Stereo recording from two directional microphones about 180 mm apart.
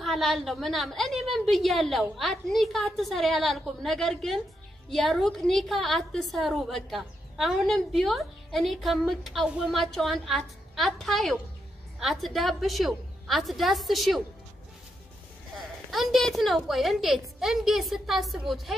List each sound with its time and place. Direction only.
0.0 s a woman's voice: centre (ahead or behind)
15.9 s a woman's voice: centre (ahead or behind)